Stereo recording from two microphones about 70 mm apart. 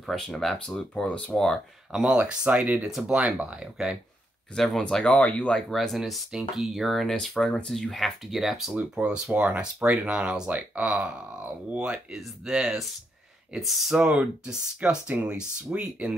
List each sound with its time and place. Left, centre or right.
0.0 s speech: centre
1.0 s speech: centre
1.9 s speech: centre
2.9 s speech: centre
3.2 s speech: centre
4.6 s speech: centre
5.7 s speech: centre; by 11.1 s right
11.9 s speech: centre
13.9 s speech: centre